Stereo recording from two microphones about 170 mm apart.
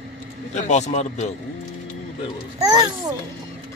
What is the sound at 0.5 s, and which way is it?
Speech, 45° left (ahead or behind).